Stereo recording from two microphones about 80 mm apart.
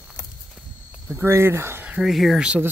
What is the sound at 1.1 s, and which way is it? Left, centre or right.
Speech, right.